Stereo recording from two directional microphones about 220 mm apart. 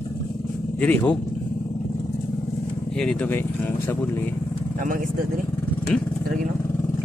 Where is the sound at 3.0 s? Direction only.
5° left (ahead or behind).